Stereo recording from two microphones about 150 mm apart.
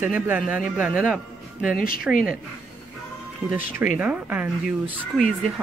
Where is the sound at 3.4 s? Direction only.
10° right (ahead or behind).